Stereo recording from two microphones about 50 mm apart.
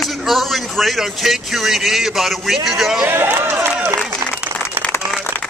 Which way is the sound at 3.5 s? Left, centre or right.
Right.